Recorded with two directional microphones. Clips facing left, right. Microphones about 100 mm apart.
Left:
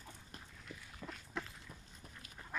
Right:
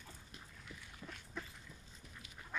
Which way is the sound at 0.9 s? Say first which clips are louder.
Left 4 dB; centre (ahead or behind).